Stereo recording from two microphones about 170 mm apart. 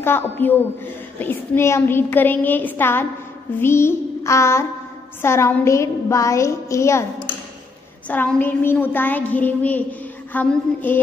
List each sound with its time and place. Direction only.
0.0 s a woman's voice: 10° left (ahead or behind)
8.1 s a woman's voice: 10° left (ahead or behind)